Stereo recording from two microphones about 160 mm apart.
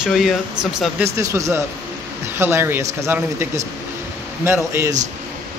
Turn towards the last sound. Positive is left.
turn(degrees=-15)  # may be behind; listen again after turning